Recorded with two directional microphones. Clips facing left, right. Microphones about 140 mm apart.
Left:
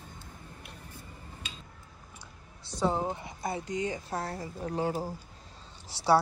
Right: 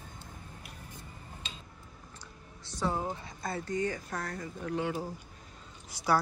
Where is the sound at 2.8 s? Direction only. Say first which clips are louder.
Left 4 dB; 20° left (ahead or behind).